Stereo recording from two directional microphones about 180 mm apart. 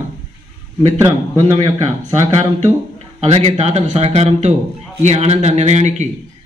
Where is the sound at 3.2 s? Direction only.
35° right (ahead or behind).